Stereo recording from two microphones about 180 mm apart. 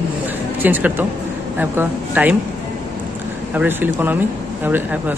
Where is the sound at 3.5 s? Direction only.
10° right (ahead or behind).